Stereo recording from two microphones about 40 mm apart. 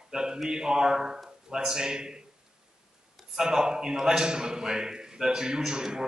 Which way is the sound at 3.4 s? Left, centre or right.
Centre.